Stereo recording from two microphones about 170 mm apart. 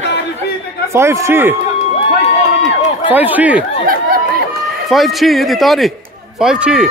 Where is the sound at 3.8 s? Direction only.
60° right (ahead or behind).